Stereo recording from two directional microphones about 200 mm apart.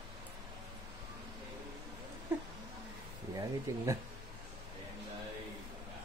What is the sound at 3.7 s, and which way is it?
Speech, 15° right (ahead or behind).